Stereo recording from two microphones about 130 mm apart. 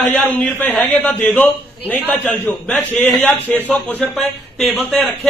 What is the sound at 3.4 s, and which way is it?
A man's voice, 10° left (ahead or behind).